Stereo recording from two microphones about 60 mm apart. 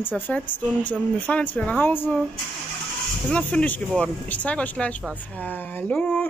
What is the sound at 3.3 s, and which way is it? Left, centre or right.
Speech, left.